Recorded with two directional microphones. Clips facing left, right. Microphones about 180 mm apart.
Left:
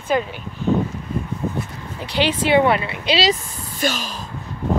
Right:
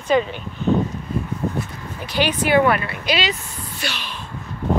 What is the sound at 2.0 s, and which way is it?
Speech, 25° left (ahead or behind).